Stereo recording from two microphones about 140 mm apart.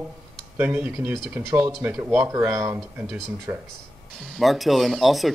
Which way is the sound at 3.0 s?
5° right (ahead or behind).